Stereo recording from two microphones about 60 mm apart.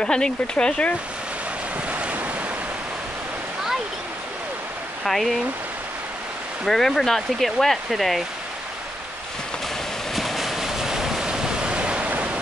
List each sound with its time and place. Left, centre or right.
0.0 s speech: centre
1.9 s waves: right
5.0 s speech: centre
6.6 s speech: centre
10.1 s waves: centre; by 12.4 s right